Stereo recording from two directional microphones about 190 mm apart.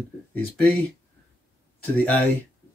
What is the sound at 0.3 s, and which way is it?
Speech, 5° left (ahead or behind).